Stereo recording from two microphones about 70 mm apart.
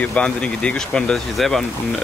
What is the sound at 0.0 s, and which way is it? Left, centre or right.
Speech, centre.